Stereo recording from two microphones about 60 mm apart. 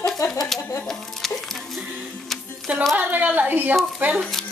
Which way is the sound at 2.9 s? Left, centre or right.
Right.